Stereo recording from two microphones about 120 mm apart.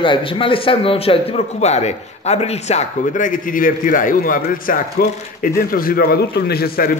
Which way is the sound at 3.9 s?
90° left.